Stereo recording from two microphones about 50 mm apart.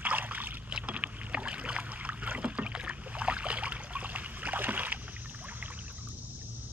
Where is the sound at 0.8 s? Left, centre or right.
Right.